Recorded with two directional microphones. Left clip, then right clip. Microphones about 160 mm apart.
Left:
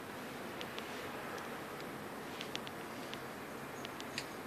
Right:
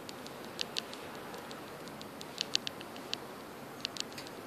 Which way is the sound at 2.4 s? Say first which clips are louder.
Right 11 dB; 90° right.